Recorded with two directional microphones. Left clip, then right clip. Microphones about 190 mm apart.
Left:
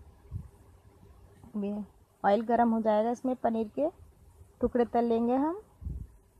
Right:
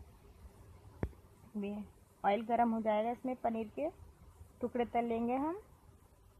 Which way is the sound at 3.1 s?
40° left (ahead or behind).